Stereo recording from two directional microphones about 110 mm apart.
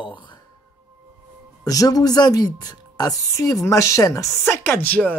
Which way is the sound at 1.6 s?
35° left (ahead or behind).